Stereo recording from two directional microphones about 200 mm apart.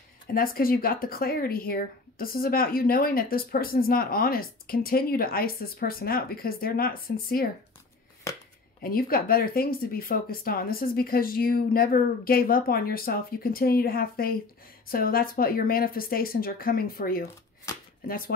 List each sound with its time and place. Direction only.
0.3 s speech: 45° left (ahead or behind)
8.3 s shuffling cards: 15° left (ahead or behind)
8.8 s speech: 50° left (ahead or behind)
17.7 s shuffling cards: 15° left (ahead or behind)
18.0 s speech: 45° left (ahead or behind)